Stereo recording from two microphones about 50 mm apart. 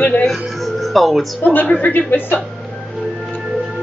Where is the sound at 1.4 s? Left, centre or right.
Left.